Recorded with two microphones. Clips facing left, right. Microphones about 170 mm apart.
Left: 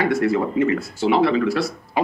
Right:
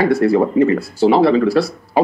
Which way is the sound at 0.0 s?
35° right (ahead or behind).